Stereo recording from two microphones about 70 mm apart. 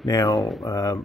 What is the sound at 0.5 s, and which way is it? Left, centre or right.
Speech, left.